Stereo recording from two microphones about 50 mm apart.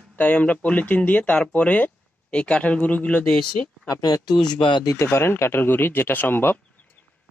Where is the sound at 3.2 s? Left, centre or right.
Centre.